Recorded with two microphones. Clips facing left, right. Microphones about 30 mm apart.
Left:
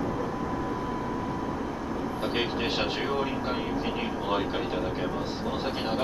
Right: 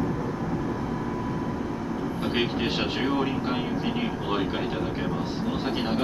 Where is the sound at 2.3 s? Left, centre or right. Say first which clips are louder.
Right 3 dB; centre.